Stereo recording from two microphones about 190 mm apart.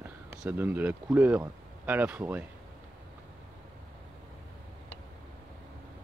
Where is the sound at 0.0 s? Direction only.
10° right (ahead or behind).